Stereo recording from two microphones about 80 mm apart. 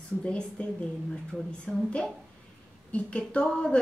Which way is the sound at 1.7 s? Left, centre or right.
Centre.